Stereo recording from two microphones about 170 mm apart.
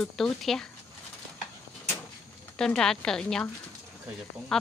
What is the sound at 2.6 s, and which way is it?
Speech, 5° left (ahead or behind).